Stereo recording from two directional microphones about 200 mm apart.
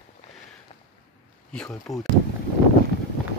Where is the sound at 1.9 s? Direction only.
Centre (ahead or behind).